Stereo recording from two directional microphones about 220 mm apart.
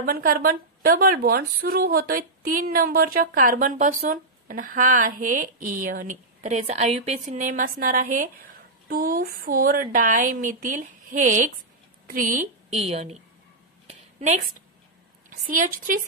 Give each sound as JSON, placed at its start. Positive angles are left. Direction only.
{"t": 0.0, "sound": "speech", "side_deg": -40}
{"t": 13.8, "sound": "a sound", "side_deg": -30}
{"t": 15.2, "sound": "a woman's voice", "side_deg": -35}